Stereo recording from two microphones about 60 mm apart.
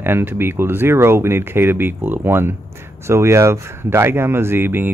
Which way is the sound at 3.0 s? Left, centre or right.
Right.